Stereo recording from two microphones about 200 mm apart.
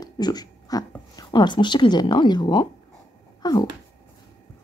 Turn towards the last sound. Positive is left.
turn(degrees=20)  # may be behind; listen again after turning